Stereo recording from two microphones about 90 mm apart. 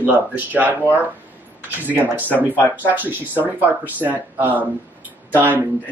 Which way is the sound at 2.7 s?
20° right (ahead or behind).